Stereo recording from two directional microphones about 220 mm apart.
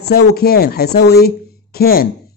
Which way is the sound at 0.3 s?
45° left (ahead or behind).